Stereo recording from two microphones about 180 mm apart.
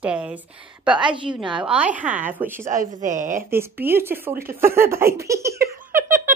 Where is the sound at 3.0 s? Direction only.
45° right (ahead or behind).